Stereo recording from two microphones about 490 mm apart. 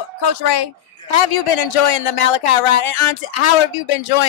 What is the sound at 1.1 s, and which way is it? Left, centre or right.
Speech, left.